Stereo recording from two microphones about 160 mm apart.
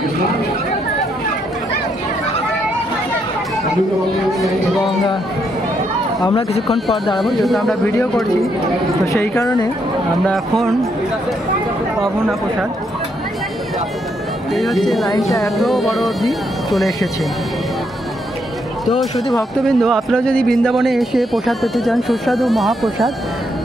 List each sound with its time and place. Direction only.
6.2 s speech: 35° left (ahead or behind)
7.2 s speech: centre (ahead or behind)
9.0 s a woman's voice: 15° left (ahead or behind)
10.2 s speech: centre (ahead or behind)
14.5 s speech: centre (ahead or behind)
18.9 s speech: centre (ahead or behind)